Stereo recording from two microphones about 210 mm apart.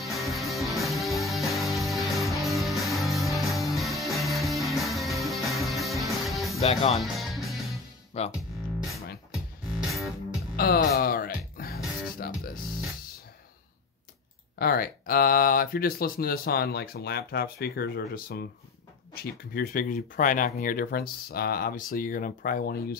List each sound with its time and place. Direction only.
0.0 s music: centre (ahead or behind)
6.6 s speech: 30° left (ahead or behind)
7.0 s music: centre (ahead or behind)
8.2 s speech: 30° left (ahead or behind)
9.3 s music: centre (ahead or behind)
10.5 s music: 45° left (ahead or behind)
14.6 s speech: 45° left (ahead or behind)
19.5 s speech: 40° left (ahead or behind)